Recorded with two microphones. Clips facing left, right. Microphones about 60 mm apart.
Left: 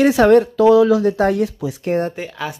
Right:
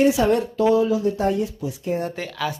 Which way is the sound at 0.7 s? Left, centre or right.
Left.